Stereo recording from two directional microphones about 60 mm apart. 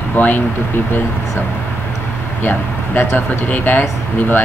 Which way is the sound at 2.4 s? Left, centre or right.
Left.